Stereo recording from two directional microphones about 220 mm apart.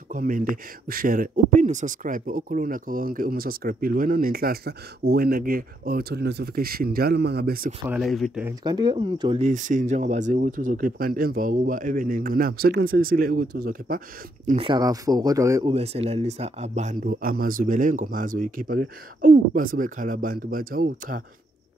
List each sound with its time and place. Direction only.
0.1 s speech: 35° right (ahead or behind)
7.8 s speech: 5° right (ahead or behind)
8.5 s speech: 20° right (ahead or behind)
9.5 s speech: 35° right (ahead or behind)
14.7 s speech: 15° right (ahead or behind)
15.7 s speech: 30° right (ahead or behind)